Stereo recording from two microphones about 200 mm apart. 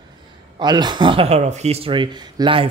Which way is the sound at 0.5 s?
20° right (ahead or behind).